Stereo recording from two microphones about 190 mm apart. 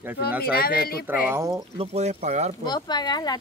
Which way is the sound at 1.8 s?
35° right (ahead or behind).